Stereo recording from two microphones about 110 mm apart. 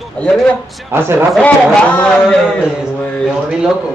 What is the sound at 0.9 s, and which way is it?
Speech, 20° right (ahead or behind).